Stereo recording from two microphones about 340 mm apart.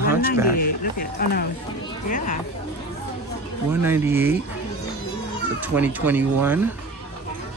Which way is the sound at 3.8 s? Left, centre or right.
Centre.